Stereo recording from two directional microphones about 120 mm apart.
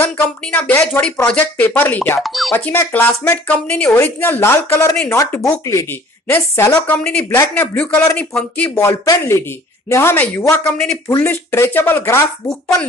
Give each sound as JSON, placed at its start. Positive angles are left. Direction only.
{"t": 0.0, "sound": "speech", "side_deg": 15}
{"t": 2.2, "sound": "speech", "side_deg": 0}
{"t": 2.5, "sound": "speech", "side_deg": 15}
{"t": 8.7, "sound": "speech", "side_deg": 25}
{"t": 11.1, "sound": "speech", "side_deg": 25}